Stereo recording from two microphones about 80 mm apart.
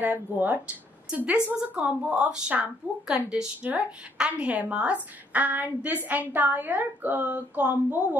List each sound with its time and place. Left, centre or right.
0.0 s a woman's voice: right